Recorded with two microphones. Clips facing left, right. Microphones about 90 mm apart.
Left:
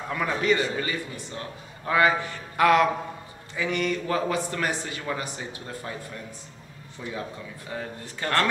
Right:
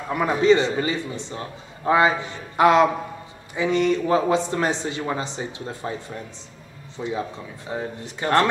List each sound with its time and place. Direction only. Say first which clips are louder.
0.1 s a man's voice: right 7 dB; 20° right (ahead or behind)